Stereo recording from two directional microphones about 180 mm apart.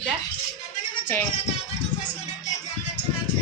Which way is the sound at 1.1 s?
10° left (ahead or behind).